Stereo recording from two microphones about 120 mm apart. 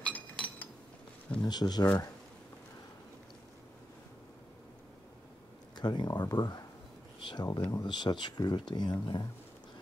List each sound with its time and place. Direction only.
0.0 s chink: 10° left (ahead or behind)
1.4 s speech: 35° left (ahead or behind)
5.8 s speech: 35° left (ahead or behind)